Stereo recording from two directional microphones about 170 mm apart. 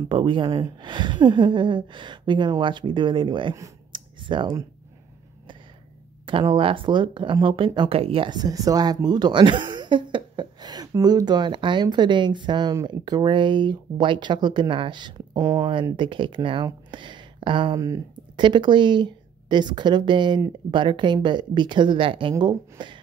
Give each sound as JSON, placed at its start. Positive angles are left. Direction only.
{"t": 0.1, "sound": "speech", "side_deg": -30}
{"t": 6.2, "sound": "speech", "side_deg": -30}